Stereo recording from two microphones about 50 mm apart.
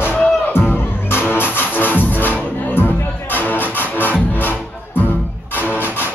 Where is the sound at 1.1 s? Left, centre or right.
Left.